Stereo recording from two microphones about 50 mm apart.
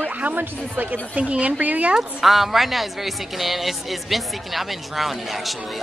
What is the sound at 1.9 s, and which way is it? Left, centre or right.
A woman's voice, centre.